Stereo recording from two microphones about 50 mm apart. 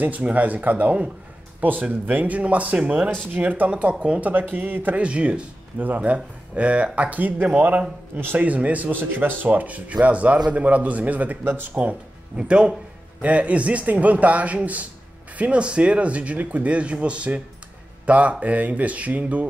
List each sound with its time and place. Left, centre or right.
0.0 s speech: right
4.0 s speech: right
4.3 s speech: right
5.8 s speech: right
8.9 s speech: right
12.4 s speech: centre